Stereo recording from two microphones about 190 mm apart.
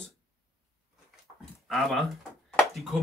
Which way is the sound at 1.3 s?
Centre (ahead or behind).